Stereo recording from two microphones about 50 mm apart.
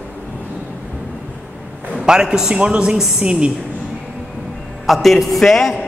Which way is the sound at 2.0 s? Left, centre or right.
Centre.